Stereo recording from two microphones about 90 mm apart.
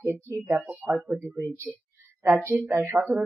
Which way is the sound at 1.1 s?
25° right (ahead or behind).